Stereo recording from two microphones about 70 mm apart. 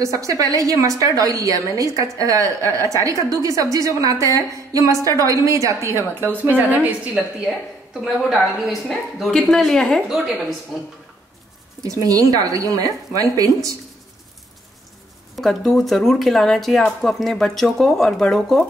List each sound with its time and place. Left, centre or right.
0.0 s a woman's voice: right
7.2 s a woman's voice: centre
10.0 s a woman's voice: centre
11.8 s a woman's voice: right
15.3 s a woman's voice: centre